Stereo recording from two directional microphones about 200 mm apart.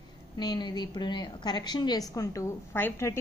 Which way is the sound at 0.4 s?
20° left (ahead or behind).